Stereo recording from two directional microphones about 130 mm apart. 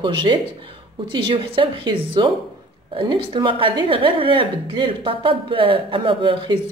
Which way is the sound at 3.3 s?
40° right (ahead or behind).